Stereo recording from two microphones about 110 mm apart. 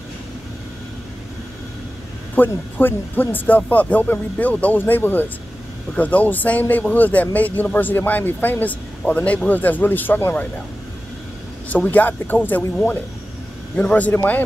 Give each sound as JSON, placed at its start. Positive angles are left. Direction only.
{"t": 2.3, "sound": "speech", "side_deg": 15}
{"t": 11.7, "sound": "speech", "side_deg": 15}